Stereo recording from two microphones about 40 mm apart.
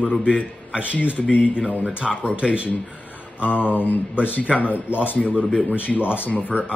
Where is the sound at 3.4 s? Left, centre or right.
Left.